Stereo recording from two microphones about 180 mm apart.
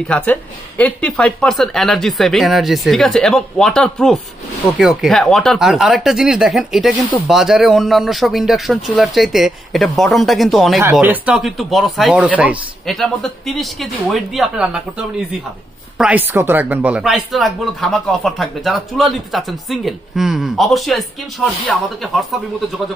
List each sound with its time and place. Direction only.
0.1 s speech: 10° left (ahead or behind)